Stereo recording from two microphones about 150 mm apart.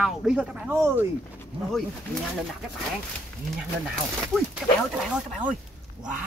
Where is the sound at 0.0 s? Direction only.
5° right (ahead or behind).